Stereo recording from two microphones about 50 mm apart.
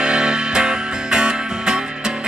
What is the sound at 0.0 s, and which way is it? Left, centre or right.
Music, centre.